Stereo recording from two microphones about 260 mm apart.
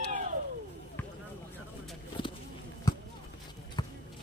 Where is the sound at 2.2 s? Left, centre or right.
Centre.